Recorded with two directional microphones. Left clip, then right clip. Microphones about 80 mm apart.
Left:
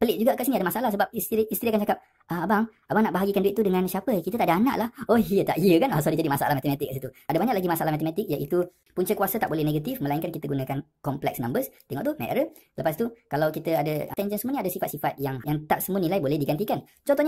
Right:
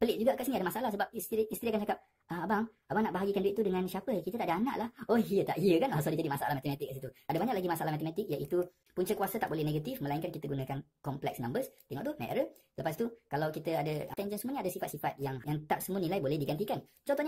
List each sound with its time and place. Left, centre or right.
0.0 s speech: left